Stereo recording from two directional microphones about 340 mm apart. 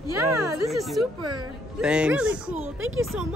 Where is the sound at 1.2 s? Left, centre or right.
Right.